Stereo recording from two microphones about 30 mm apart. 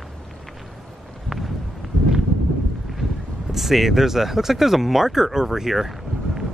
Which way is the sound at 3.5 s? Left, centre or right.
Centre.